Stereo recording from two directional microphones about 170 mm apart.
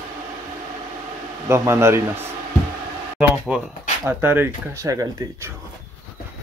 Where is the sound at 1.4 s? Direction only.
15° right (ahead or behind).